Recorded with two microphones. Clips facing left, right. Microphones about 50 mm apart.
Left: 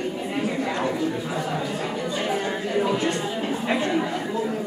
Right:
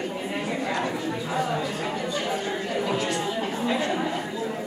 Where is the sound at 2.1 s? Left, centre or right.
Left.